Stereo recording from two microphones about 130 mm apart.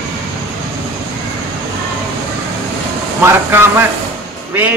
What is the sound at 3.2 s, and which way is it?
Speech, 20° right (ahead or behind).